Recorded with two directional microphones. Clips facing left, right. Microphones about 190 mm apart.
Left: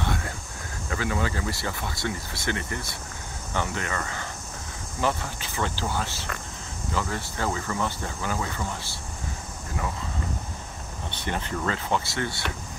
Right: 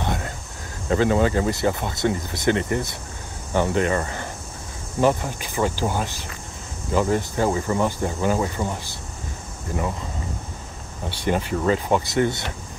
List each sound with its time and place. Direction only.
0.8 s speech: 30° right (ahead or behind)
5.0 s speech: 15° right (ahead or behind)
11.1 s speech: 10° right (ahead or behind)